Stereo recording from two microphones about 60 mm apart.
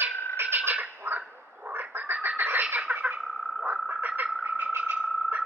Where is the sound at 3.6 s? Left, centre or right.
Right.